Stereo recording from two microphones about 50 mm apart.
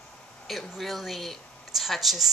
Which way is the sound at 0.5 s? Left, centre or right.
Centre.